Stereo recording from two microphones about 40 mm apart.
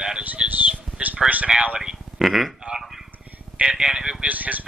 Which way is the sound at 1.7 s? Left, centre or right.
Centre.